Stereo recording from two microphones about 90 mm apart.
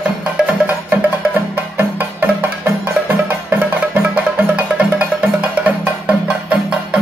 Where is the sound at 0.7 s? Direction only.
20° right (ahead or behind).